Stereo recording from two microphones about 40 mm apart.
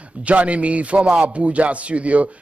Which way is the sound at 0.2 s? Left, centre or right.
Right.